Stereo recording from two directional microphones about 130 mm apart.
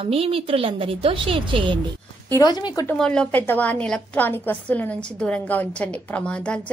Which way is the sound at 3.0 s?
5° left (ahead or behind).